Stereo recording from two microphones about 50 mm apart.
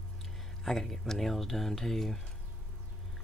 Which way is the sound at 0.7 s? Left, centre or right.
Centre.